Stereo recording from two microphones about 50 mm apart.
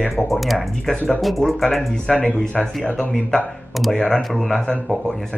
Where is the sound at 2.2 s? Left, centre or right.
Left.